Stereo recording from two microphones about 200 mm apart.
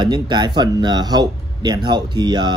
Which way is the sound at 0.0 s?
20° right (ahead or behind).